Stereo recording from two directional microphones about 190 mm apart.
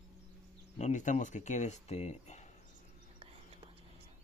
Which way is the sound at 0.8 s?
40° left (ahead or behind).